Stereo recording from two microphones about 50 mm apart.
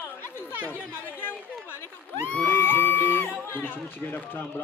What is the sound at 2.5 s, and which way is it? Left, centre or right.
Music, left.